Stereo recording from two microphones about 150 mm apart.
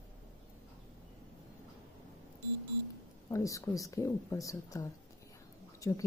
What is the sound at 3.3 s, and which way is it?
A woman's voice, 20° left (ahead or behind).